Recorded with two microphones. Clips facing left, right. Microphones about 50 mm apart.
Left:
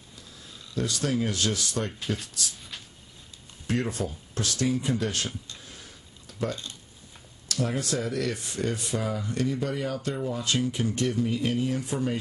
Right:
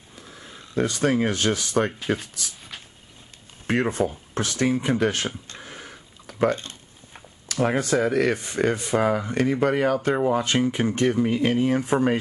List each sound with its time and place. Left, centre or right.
0.1 s speech: right
3.6 s speech: right
5.5 s a sound: right
9.2 s speech: right
9.6 s speech: right
10.4 s speech: right